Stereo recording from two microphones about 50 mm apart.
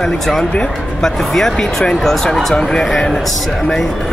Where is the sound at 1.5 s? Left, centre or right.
Centre.